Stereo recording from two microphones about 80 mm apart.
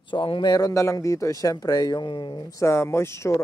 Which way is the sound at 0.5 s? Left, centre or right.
Left.